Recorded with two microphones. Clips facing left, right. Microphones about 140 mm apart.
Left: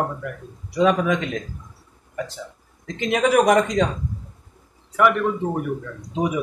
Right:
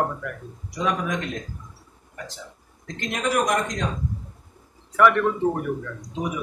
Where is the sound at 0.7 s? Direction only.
80° left.